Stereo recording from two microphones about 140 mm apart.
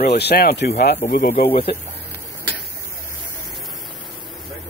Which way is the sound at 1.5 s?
40° left (ahead or behind).